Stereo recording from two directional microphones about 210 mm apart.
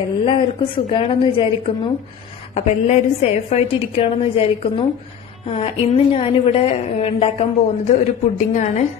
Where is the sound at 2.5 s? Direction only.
30° left (ahead or behind).